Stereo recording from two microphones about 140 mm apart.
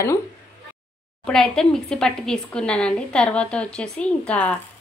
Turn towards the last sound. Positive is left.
turn(degrees=10)  # may be behind; listen again after turning